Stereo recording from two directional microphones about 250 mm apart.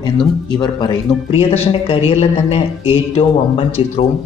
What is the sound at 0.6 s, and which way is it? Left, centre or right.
Speech, centre.